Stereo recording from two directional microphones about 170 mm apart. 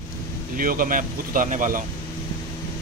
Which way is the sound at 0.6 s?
55° right (ahead or behind).